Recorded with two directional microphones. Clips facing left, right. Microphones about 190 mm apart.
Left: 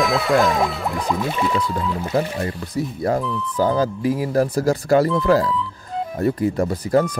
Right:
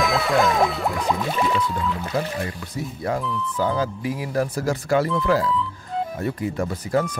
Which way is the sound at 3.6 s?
40° left (ahead or behind).